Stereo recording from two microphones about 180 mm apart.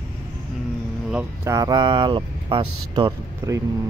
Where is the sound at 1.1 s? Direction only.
15° right (ahead or behind).